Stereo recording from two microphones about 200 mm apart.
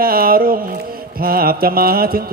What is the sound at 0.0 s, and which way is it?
Mantra, 45° right (ahead or behind).